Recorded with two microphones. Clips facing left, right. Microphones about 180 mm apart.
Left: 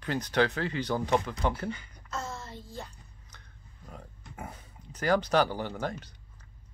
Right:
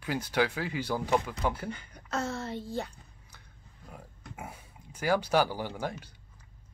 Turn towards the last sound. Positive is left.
turn(degrees=-10)  # may be behind; listen again after turning